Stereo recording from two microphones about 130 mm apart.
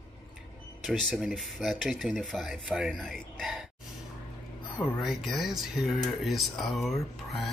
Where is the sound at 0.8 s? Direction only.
Centre (ahead or behind).